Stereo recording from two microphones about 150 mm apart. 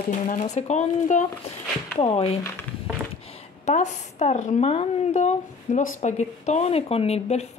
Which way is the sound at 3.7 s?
50° left (ahead or behind).